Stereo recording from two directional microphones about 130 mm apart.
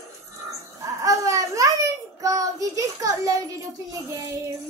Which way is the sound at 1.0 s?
25° right (ahead or behind).